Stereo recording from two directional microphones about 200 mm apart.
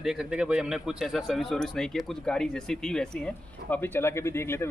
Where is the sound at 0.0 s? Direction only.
Centre (ahead or behind).